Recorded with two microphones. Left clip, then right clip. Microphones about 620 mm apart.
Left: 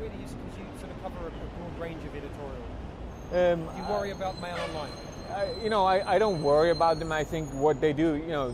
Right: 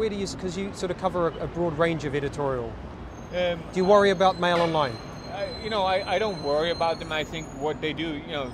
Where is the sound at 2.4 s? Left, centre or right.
Right.